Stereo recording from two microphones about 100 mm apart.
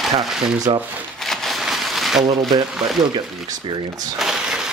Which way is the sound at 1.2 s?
Centre (ahead or behind).